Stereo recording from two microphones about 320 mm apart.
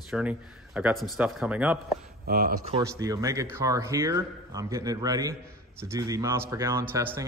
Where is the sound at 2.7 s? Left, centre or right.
Centre.